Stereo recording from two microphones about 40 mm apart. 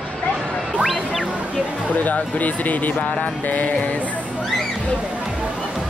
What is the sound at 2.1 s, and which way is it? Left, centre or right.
Speech, left.